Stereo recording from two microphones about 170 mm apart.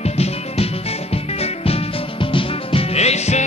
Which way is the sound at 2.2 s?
30° left (ahead or behind).